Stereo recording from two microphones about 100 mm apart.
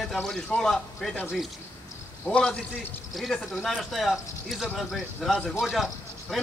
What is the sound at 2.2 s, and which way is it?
A man's voice, 10° left (ahead or behind).